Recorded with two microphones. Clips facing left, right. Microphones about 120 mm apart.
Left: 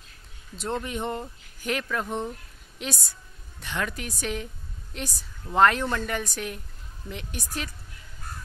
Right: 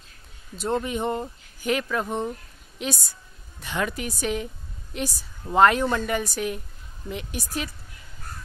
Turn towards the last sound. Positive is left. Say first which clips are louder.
# right 4 dB
turn(degrees=-5)  # may be behind; listen again after turning